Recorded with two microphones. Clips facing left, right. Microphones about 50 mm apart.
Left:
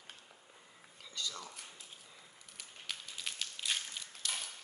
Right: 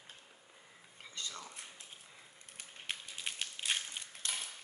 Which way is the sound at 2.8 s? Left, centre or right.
Right.